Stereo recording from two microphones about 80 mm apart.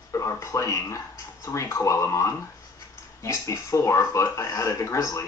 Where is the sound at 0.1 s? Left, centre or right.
Left.